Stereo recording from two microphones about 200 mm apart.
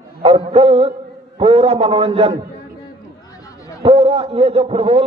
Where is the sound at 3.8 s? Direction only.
30° right (ahead or behind).